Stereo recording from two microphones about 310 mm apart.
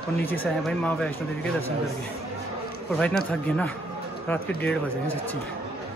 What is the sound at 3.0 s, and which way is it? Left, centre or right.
Speech, centre.